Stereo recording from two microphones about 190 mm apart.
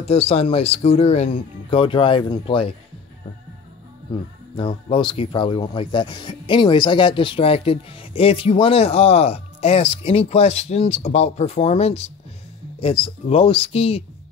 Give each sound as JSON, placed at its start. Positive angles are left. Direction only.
{"t": 0.0, "sound": "speech", "side_deg": 30}
{"t": 4.6, "sound": "speech", "side_deg": 25}